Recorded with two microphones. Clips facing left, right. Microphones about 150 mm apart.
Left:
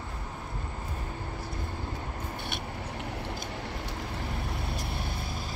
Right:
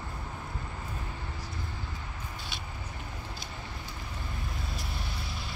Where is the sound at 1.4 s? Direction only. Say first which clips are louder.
Left 4 dB; 50° left (ahead or behind).